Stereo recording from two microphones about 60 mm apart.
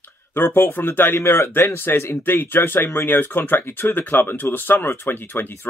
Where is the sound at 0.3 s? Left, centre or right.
Left.